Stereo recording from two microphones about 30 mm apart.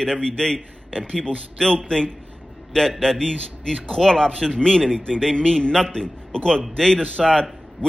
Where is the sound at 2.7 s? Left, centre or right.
Centre.